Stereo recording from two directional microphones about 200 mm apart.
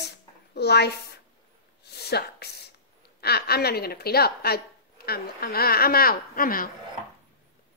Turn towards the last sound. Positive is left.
turn(degrees=45)  # may be behind; listen again after turning